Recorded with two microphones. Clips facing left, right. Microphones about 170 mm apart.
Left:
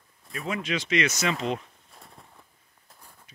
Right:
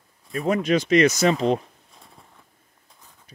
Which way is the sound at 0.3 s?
40° right (ahead or behind).